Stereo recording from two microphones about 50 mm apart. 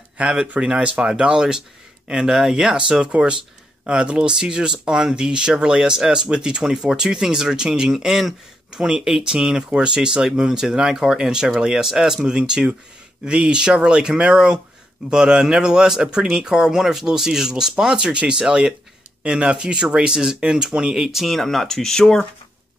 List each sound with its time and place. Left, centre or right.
0.2 s speech: centre
21.1 s speech: centre